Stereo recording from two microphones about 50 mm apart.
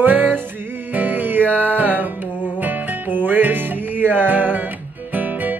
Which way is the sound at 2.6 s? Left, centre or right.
Right.